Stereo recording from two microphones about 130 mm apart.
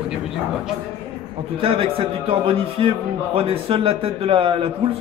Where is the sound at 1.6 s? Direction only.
45° right (ahead or behind).